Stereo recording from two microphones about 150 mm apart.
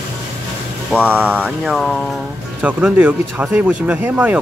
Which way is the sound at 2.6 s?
10° right (ahead or behind).